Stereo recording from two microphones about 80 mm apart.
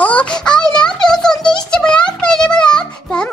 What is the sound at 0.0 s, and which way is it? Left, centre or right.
Music, centre.